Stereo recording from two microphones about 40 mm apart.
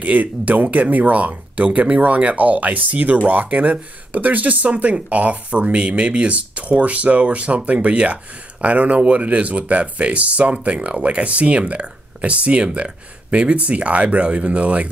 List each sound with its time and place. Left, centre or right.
0.0 s speech: right